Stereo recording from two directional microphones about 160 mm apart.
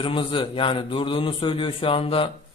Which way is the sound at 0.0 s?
30° left (ahead or behind).